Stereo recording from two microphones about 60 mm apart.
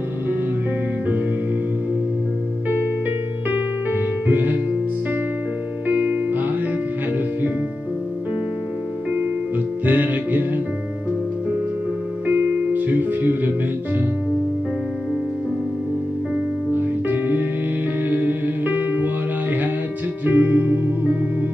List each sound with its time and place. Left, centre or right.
3.4 s music: right
5.9 s music: right
9.8 s music: right
12.3 s music: right
17.1 s music: right
20.2 s music: right